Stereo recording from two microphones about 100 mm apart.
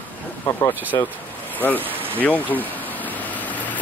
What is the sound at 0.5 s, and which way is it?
Speech, 35° left (ahead or behind).